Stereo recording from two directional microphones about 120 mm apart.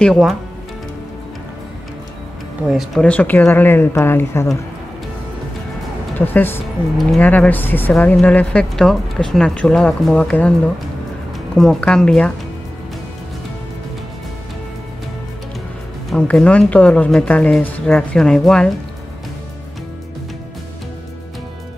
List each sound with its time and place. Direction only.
0.0 s speech: centre (ahead or behind)
2.6 s speech: centre (ahead or behind)
3.0 s speech: 10° left (ahead or behind)
6.1 s speech: 15° left (ahead or behind)
11.5 s speech: centre (ahead or behind)
16.1 s speech: 5° left (ahead or behind)